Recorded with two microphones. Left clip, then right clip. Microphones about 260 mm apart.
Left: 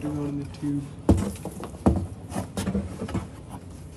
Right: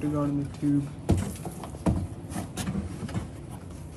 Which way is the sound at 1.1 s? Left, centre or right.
Centre.